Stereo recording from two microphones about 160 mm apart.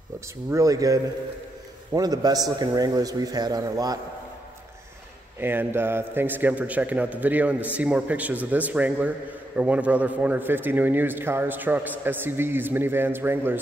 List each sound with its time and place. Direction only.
0.5 s a man's voice: 20° right (ahead or behind)
5.4 s a man's voice: 15° right (ahead or behind)